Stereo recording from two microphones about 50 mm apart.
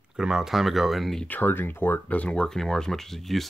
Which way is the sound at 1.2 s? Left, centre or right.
Left.